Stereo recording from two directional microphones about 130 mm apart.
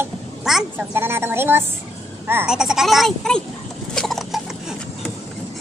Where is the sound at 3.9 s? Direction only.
5° left (ahead or behind).